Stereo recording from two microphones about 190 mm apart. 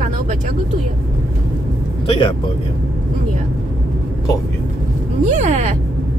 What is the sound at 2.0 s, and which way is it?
Speech, 25° left (ahead or behind).